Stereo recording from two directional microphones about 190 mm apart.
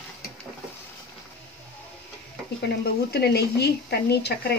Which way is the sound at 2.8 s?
55° left (ahead or behind).